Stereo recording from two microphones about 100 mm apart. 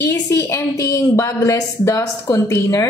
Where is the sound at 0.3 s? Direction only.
30° left (ahead or behind).